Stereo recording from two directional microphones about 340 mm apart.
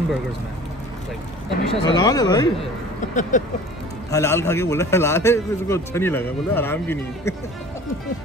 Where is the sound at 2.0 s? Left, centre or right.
Centre.